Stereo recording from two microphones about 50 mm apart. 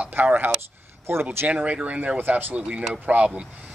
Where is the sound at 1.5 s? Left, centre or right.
Right.